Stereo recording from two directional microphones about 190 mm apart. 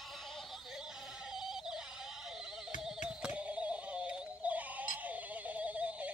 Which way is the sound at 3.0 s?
5° right (ahead or behind).